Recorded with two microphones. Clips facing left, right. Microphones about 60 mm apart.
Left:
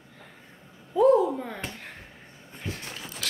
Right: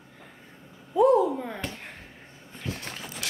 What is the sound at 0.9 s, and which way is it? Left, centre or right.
Speech, centre.